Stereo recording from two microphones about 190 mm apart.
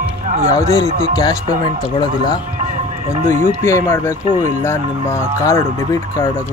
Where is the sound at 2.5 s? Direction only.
35° right (ahead or behind).